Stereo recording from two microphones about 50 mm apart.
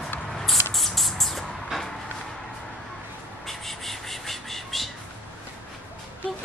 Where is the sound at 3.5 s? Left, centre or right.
Centre.